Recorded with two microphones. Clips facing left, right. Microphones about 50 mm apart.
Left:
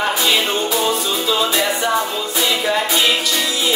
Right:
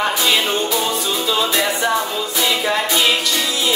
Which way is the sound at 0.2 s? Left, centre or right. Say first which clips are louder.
Even; centre.